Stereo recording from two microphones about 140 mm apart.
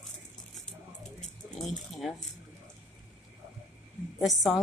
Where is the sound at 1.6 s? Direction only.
Centre (ahead or behind).